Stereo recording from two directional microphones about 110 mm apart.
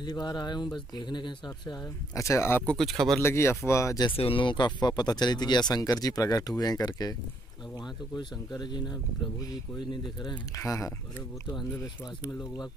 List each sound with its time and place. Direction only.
0.0 s speech: 40° left (ahead or behind)
2.1 s speech: 25° left (ahead or behind)
2.6 s speech: 5° left (ahead or behind)
3.2 s speech: 25° left (ahead or behind)
4.2 s speech: 55° left (ahead or behind); by 7.2 s 35° left (ahead or behind)
8.2 s speech: 40° left (ahead or behind)
10.6 s speech: 30° left (ahead or behind)